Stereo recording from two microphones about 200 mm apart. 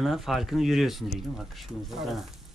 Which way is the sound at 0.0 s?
Centre (ahead or behind).